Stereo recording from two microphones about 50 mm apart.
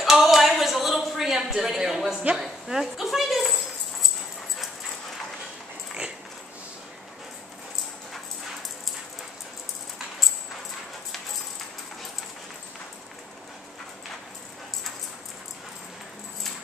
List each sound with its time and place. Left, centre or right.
0.0 s speech: centre